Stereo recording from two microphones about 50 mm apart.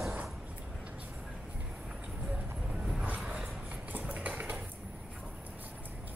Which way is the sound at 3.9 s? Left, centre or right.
Right.